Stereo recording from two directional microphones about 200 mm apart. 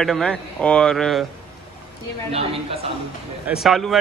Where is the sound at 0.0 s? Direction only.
5° left (ahead or behind).